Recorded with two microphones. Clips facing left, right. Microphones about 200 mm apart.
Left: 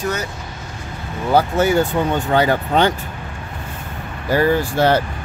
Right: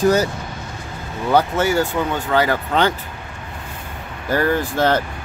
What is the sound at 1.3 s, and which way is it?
Speech, 15° left (ahead or behind).